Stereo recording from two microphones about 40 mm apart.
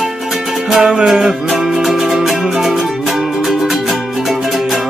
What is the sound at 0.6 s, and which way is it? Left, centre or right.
Music, centre.